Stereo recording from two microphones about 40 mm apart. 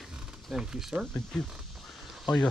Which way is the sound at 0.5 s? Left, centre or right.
Centre.